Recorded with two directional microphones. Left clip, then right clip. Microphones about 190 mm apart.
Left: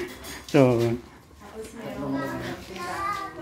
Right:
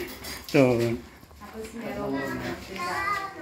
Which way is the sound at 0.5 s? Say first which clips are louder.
Left 1 dB; 20° left (ahead or behind).